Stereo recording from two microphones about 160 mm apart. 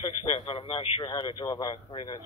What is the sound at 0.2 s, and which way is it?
A man's voice, 35° left (ahead or behind).